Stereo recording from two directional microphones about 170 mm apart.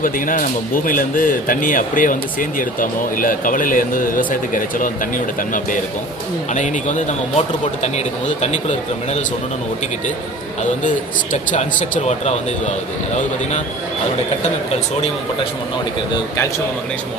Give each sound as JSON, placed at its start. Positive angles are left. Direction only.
{"t": 0.0, "sound": "speech", "side_deg": 55}
{"t": 11.5, "sound": "speech", "side_deg": 50}